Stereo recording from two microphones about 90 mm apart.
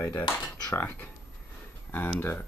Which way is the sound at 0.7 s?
20° left (ahead or behind).